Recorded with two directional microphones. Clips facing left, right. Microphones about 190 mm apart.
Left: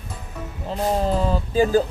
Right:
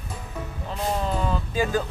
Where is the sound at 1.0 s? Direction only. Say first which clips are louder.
Left 5 dB; 35° left (ahead or behind).